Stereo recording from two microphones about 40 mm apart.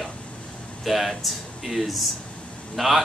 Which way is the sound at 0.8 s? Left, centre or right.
Centre.